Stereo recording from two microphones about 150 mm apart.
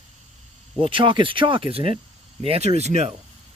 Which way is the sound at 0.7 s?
35° right (ahead or behind).